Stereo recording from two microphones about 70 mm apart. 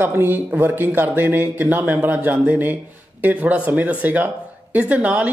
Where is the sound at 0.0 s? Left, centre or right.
Right.